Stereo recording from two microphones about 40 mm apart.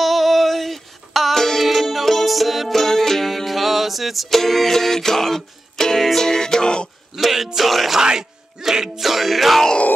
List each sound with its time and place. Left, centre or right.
0.0 s music: centre; by 6.9 s left
7.2 s music: centre
8.0 s speech: centre
9.0 s music: centre